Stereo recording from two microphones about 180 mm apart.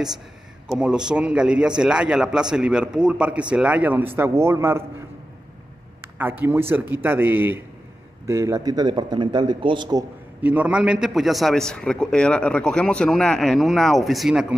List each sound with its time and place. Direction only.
0.7 s a man's voice: 5° right (ahead or behind)
6.4 s a man's voice: 10° right (ahead or behind)
10.4 s a man's voice: 10° right (ahead or behind)